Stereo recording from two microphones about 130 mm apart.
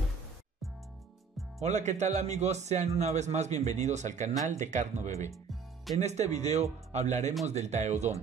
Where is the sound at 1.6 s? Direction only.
65° right (ahead or behind).